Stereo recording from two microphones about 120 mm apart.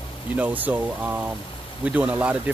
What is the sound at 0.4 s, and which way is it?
Speech, 15° right (ahead or behind).